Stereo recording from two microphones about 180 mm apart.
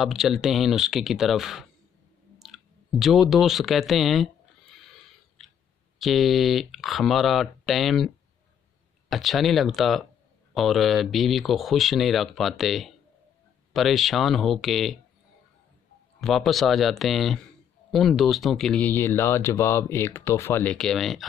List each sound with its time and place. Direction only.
0.0 s speech: centre (ahead or behind)
4.7 s a sound: centre (ahead or behind)
5.9 s speech: centre (ahead or behind)
9.1 s speech: centre (ahead or behind)
16.2 s speech: centre (ahead or behind)